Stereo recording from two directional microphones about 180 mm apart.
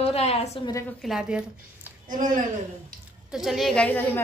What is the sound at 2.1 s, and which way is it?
Speech, 45° right (ahead or behind).